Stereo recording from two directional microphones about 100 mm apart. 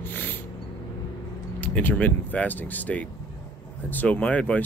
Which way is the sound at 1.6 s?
15° left (ahead or behind).